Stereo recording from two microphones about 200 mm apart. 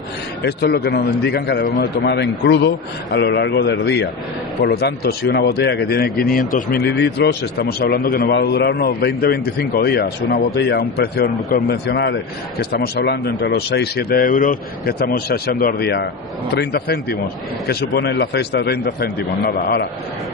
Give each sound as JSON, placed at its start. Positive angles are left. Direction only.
{"t": 0.4, "sound": "speech", "side_deg": 55}